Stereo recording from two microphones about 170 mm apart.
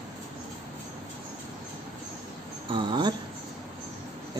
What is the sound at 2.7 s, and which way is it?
Speech, 25° right (ahead or behind).